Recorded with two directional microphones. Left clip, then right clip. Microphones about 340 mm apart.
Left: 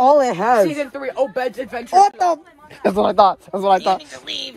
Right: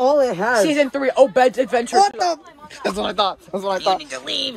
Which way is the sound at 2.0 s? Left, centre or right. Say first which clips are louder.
Left 5 dB; centre.